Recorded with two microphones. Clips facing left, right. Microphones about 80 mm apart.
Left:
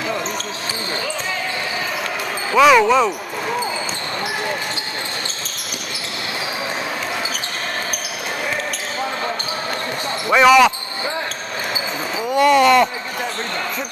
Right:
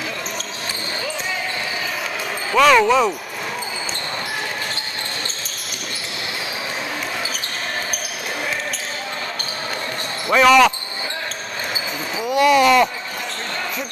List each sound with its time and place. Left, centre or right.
2.5 s speech: centre
10.2 s speech: centre
12.2 s speech: centre